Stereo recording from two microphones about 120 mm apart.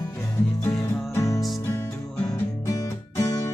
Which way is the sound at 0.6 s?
25° left (ahead or behind).